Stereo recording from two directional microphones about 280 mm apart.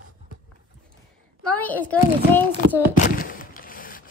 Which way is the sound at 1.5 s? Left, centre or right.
Centre.